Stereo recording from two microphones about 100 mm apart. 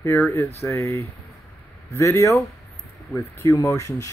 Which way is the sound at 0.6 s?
30° left (ahead or behind).